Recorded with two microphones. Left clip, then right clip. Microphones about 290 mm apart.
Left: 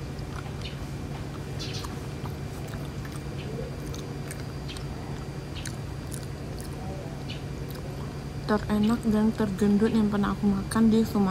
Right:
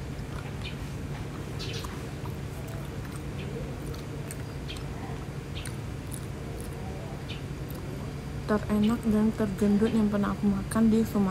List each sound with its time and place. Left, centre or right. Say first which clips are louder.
8.5 s speech: left 1 dB; centre